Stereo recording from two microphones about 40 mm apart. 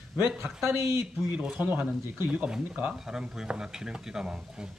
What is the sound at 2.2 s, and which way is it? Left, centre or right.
Speech, right.